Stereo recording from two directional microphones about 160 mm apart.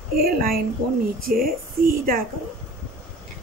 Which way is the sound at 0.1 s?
65° right (ahead or behind).